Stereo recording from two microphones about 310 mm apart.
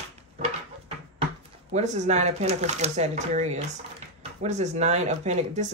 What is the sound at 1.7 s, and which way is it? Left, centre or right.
Speech, right.